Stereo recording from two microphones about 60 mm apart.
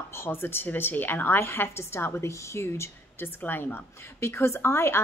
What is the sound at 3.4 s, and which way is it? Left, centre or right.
A woman's voice, left.